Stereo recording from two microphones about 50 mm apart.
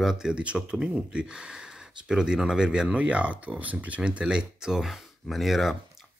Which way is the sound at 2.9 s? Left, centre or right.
Right.